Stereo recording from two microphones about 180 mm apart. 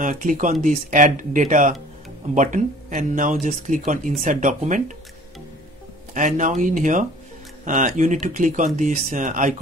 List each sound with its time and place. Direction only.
0.0 s speech: 45° right (ahead or behind)
6.1 s speech: 45° right (ahead or behind)